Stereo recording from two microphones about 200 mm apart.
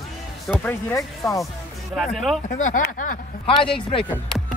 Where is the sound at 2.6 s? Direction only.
40° left (ahead or behind).